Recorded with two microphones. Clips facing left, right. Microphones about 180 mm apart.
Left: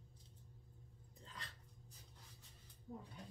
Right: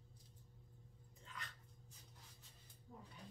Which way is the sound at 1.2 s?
35° left (ahead or behind).